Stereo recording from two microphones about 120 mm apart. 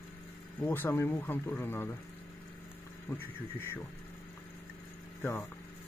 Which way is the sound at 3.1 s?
15° left (ahead or behind).